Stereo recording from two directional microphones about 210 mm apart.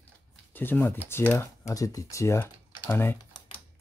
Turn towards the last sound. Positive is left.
turn(degrees=10)  # may be behind; listen again after turning